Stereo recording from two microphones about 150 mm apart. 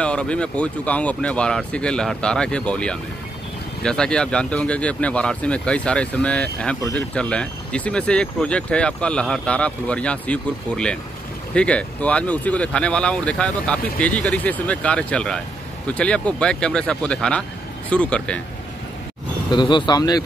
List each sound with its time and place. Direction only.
0.0 s speech: 5° left (ahead or behind)
19.5 s speech: 30° left (ahead or behind)